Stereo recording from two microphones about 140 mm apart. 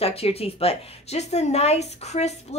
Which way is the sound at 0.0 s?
45° left (ahead or behind).